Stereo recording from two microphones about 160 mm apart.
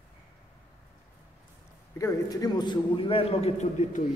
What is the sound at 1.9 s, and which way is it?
A man's voice, 20° left (ahead or behind).